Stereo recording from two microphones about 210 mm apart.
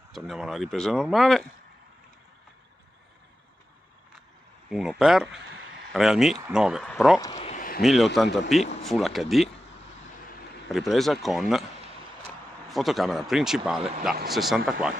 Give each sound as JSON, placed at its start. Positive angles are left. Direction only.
{"t": 0.3, "sound": "a man's voice", "side_deg": 0}
{"t": 4.6, "sound": "a man's voice", "side_deg": 0}
{"t": 5.4, "sound": "a sound", "side_deg": -60}
{"t": 5.9, "sound": "a man's voice", "side_deg": 0}
{"t": 7.3, "sound": "a sound", "side_deg": 30}
{"t": 7.8, "sound": "a man's voice", "side_deg": 0}
{"t": 10.7, "sound": "a man's voice", "side_deg": 0}
{"t": 12.6, "sound": "a man's voice", "side_deg": 0}